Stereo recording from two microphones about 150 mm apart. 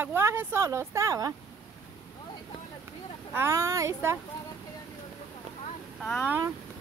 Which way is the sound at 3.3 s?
20° right (ahead or behind).